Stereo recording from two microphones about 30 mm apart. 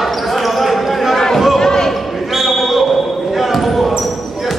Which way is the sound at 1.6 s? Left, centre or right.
Centre.